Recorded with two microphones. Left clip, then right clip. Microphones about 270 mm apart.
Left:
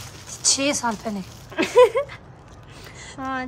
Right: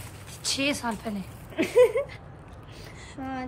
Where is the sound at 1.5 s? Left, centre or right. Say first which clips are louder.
Left 5 dB; centre.